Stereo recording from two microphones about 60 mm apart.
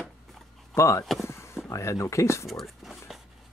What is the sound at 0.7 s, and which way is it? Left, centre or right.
Speech, left.